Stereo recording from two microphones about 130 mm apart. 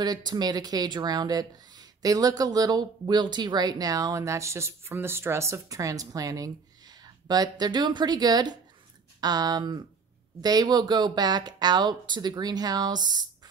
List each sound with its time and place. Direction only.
0.0 s speech: 30° right (ahead or behind)